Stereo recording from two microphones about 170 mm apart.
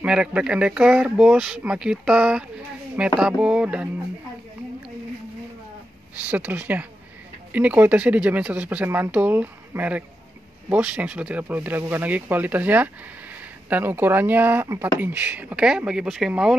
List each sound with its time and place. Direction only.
0.0 s speech: 5° right (ahead or behind)
6.2 s speech: 10° right (ahead or behind)